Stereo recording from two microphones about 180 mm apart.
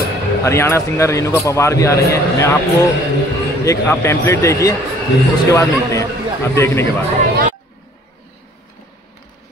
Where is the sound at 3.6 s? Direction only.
15° left (ahead or behind).